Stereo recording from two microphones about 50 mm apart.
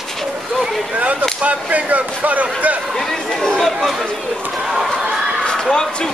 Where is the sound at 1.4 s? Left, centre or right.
Right.